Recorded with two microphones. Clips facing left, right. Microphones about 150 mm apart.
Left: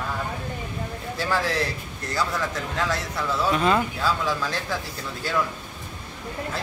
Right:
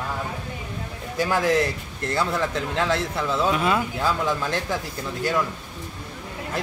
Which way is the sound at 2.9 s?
20° right (ahead or behind).